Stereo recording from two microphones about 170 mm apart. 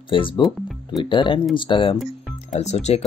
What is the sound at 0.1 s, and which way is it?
Speech, 30° left (ahead or behind).